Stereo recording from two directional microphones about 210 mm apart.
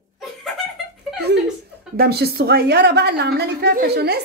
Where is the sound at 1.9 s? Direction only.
50° right (ahead or behind).